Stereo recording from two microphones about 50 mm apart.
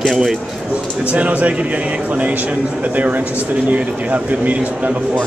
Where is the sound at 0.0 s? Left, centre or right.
Centre.